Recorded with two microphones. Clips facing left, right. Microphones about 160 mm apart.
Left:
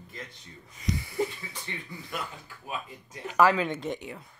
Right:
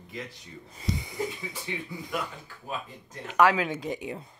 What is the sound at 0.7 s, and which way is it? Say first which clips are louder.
Speech: even; 30° right (ahead or behind).